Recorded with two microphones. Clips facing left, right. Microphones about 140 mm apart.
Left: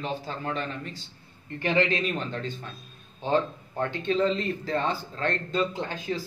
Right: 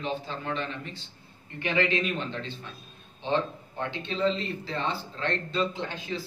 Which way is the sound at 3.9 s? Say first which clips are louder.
Left 2 dB; 45° left (ahead or behind).